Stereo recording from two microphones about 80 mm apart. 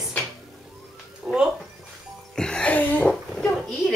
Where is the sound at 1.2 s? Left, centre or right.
Centre.